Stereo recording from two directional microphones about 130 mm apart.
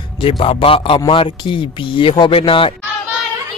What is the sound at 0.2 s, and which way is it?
A man's voice, 45° left (ahead or behind).